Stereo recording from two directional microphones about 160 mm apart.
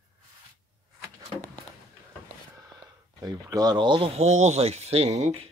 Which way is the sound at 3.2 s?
25° right (ahead or behind).